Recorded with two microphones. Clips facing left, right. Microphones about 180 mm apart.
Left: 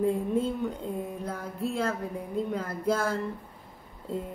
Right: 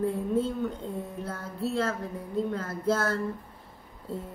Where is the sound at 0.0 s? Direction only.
15° left (ahead or behind).